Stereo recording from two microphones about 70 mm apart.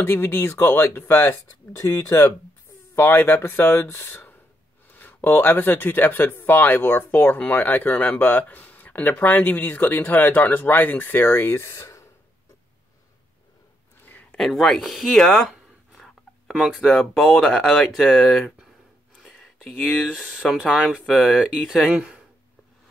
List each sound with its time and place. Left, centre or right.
0.0 s speech: left
14.3 s speech: centre
15.5 s a sound: centre
17.1 s speech: centre
19.2 s a sound: centre
20.1 s speech: centre